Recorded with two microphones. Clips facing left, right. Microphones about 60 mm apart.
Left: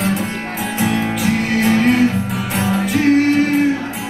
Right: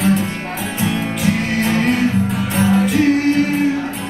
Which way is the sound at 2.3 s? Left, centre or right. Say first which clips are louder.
Right 2 dB; left.